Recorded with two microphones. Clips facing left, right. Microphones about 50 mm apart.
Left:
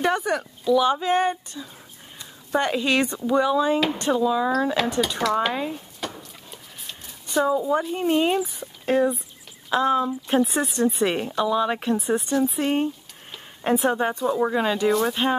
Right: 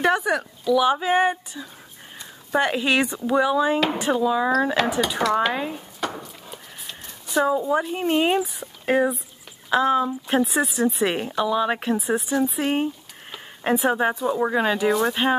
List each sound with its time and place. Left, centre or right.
0.0 s a woman's voice: centre
5.5 s speech: centre
6.0 s a sound: centre
7.6 s a woman's voice: centre